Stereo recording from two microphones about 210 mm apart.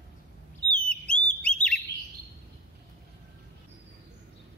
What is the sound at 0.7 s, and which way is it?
Bird, 5° left (ahead or behind).